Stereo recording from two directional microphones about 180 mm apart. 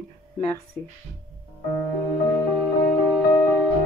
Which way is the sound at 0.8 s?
5° right (ahead or behind).